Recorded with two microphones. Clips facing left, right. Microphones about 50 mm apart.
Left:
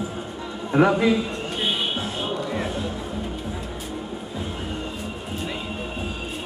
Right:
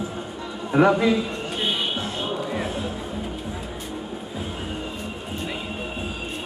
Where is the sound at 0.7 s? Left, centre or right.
Centre.